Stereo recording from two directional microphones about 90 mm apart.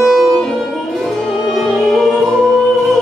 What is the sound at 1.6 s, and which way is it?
Music, centre (ahead or behind).